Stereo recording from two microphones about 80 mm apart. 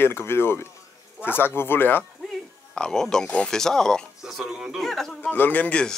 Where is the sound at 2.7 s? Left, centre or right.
Centre.